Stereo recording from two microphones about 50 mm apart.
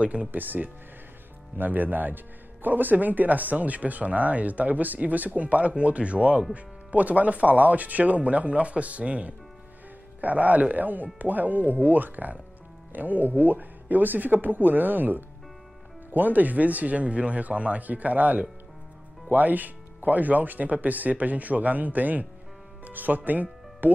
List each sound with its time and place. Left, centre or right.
0.0 s speech: right